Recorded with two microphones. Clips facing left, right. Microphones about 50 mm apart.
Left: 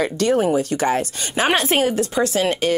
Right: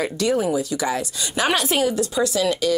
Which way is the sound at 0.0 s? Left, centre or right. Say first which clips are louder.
Left 3 dB; left.